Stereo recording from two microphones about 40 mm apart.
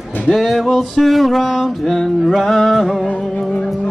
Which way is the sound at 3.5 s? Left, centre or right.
Left.